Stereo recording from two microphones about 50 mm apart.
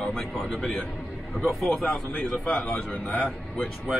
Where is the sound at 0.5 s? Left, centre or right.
Centre.